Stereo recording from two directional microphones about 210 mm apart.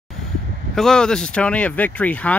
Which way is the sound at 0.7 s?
5° left (ahead or behind).